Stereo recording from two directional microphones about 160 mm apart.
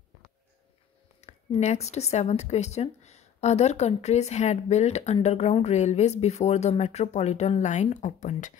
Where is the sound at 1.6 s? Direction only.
45° left (ahead or behind).